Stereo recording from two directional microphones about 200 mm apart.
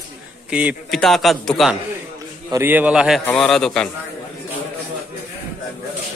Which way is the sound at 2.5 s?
10° right (ahead or behind).